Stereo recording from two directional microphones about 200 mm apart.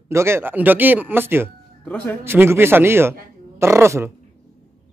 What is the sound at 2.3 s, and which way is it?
Speech, 10° right (ahead or behind).